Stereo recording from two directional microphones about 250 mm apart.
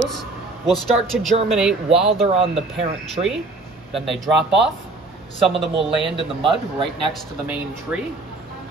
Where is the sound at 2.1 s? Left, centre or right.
Right.